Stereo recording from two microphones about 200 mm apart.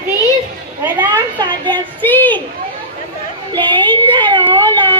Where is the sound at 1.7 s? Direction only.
10° left (ahead or behind).